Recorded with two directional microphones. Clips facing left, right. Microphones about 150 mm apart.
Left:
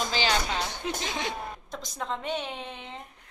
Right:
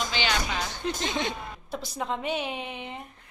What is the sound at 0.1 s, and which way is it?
Music, 35° left (ahead or behind).